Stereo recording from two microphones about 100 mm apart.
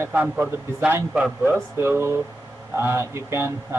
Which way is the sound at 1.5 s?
25° right (ahead or behind).